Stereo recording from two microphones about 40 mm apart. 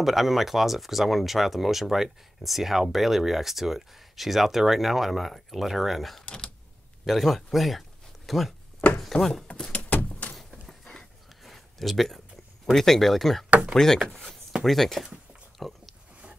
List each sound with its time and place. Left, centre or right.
0.0 s speech: centre
6.2 s speech: left
7.1 s speech: centre
9.1 s speech: centre
9.7 s vehicle: left
11.4 s a sound: centre
12.7 s speech: centre
15.6 s a sound: centre